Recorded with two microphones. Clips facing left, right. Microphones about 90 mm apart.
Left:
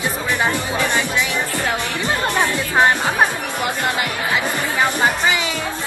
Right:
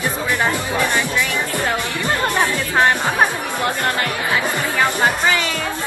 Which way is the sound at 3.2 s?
20° right (ahead or behind).